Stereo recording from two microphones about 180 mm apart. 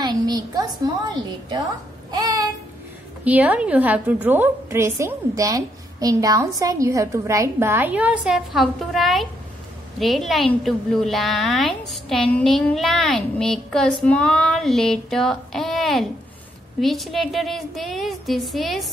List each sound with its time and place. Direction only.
0.0 s a woman's voice: 20° right (ahead or behind)
2.0 s a sound: 20° right (ahead or behind)
3.3 s a woman's voice: 10° right (ahead or behind)